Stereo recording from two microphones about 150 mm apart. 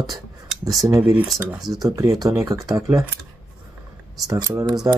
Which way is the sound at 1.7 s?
25° right (ahead or behind).